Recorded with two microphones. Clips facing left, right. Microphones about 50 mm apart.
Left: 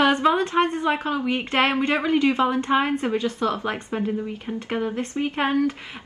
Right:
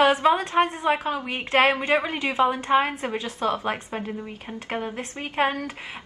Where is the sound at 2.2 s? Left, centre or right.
Centre.